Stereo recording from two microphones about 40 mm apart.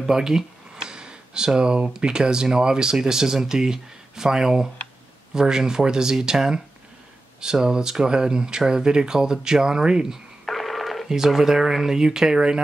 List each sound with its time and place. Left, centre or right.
0.0 s a sound: centre
1.6 s speech: right
7.6 s speech: centre
10.4 s telephone: centre
11.1 s speech: centre